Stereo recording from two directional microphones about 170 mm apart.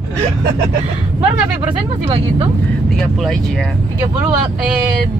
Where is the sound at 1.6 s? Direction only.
35° right (ahead or behind).